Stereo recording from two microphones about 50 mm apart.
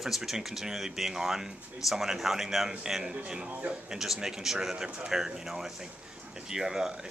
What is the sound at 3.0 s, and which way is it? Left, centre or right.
Speech, right.